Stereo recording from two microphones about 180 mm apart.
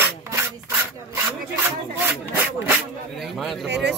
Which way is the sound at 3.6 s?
70° right (ahead or behind).